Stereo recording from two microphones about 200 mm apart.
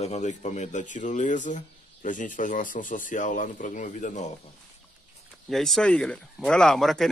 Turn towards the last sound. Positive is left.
turn(degrees=0)  # may be behind; listen again after turning